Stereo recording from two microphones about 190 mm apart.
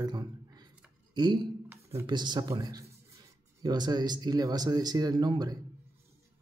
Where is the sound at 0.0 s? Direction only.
20° right (ahead or behind).